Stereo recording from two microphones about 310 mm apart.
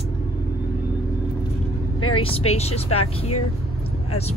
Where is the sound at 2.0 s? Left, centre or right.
Centre.